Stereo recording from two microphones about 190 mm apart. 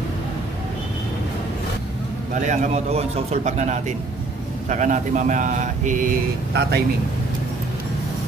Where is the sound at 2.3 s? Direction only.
40° right (ahead or behind).